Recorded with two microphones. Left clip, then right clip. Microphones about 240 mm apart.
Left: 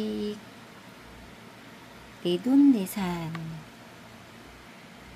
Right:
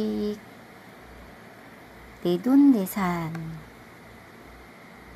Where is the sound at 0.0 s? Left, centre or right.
Centre.